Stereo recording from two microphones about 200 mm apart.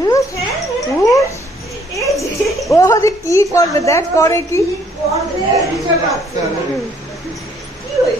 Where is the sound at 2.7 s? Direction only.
15° left (ahead or behind).